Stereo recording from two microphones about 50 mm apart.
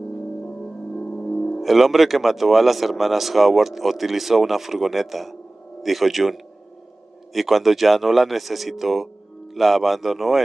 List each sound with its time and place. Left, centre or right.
1.1 s music: left
1.6 s speech: centre